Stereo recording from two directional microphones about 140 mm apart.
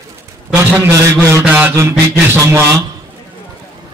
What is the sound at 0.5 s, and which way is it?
A man's voice, 20° right (ahead or behind).